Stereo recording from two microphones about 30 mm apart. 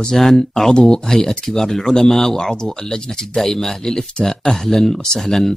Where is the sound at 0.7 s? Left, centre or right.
Left.